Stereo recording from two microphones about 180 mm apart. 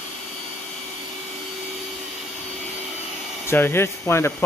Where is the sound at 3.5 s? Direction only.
15° left (ahead or behind).